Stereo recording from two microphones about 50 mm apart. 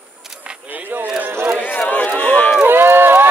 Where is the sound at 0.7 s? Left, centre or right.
Right.